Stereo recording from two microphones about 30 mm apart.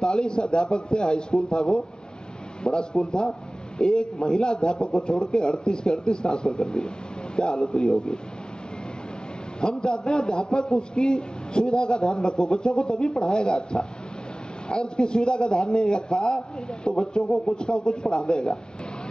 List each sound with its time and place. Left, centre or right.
0.0 s a man's voice: left
9.6 s a man's voice: left
17.3 s speech: centre
17.6 s a man's voice: left